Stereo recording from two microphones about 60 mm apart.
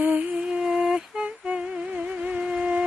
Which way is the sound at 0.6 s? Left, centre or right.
Centre.